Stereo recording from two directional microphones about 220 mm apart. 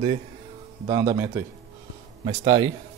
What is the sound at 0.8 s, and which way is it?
A man's voice, 15° right (ahead or behind).